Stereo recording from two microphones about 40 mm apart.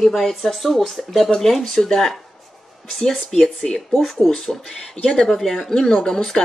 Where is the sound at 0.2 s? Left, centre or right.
Centre.